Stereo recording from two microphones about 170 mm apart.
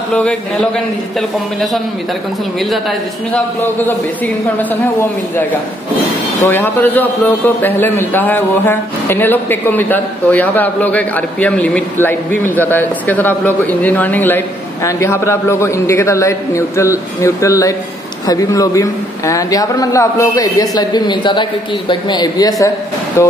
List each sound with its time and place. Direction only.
0.1 s a man's voice: 5° left (ahead or behind)
6.4 s a man's voice: 15° left (ahead or behind)